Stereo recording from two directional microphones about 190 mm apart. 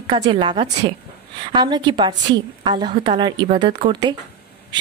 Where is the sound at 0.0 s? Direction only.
25° right (ahead or behind).